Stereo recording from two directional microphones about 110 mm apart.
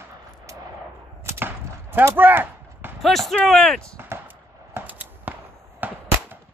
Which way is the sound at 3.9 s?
20° right (ahead or behind).